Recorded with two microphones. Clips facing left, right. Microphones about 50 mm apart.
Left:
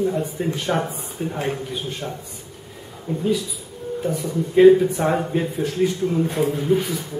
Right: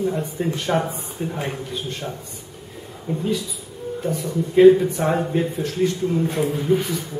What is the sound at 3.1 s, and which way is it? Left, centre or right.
Speech, centre.